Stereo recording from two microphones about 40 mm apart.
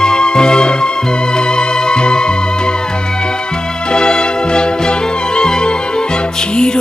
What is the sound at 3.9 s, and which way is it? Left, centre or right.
Music, centre.